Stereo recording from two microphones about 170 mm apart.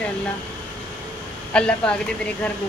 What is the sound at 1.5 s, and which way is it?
Speech, 5° left (ahead or behind).